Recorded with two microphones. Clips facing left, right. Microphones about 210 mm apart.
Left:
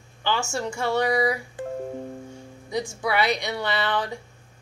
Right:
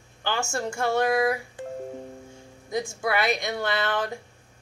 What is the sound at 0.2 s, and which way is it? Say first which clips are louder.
Speech: left 2 dB; 50° right (ahead or behind).